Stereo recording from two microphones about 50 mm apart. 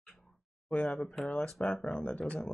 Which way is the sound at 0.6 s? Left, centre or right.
Left.